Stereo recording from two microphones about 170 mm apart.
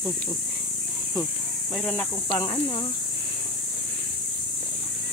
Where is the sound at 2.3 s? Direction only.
30° left (ahead or behind).